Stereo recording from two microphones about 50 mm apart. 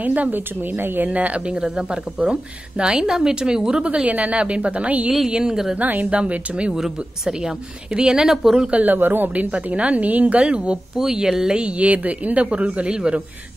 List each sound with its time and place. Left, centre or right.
0.0 s a woman's voice: right
1.0 s a woman's voice: right; by 3.8 s centre
3.8 s speech: right
5.3 s a woman's voice: centre
5.8 s a woman's voice: right
8.8 s a woman's voice: right
11.0 s speech: centre